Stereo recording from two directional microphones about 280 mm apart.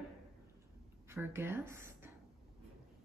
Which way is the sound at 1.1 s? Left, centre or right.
Centre.